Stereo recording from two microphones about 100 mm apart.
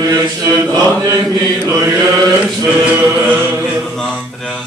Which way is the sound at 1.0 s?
35° right (ahead or behind).